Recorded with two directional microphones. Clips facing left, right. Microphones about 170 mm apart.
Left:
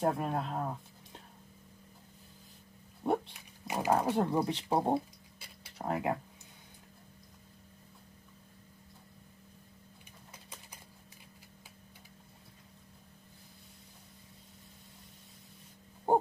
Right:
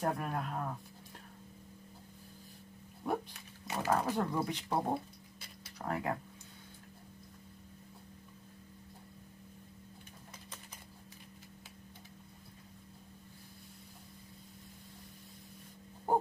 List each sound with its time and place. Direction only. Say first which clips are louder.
0.0 s speech: left 4 dB; 25° left (ahead or behind)
3.0 s dog: left 5 dB; 25° left (ahead or behind)
3.6 s speech: left 3 dB; 15° left (ahead or behind)
4.1 s speech: left 4 dB; 25° left (ahead or behind)
16.1 s wail: left 4 dB; 25° left (ahead or behind)